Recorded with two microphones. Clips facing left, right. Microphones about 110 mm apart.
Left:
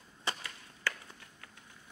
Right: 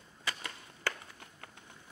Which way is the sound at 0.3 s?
25° left (ahead or behind).